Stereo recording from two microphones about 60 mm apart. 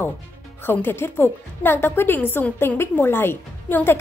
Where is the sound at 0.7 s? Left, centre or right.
Left.